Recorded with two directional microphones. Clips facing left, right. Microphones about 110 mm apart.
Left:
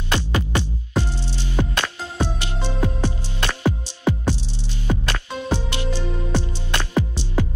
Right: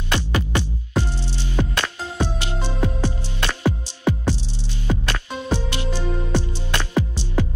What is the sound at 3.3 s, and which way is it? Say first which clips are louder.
Music: even; 15° left (ahead or behind).